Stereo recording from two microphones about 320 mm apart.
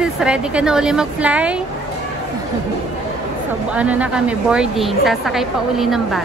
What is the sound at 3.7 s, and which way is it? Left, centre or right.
Speech, centre.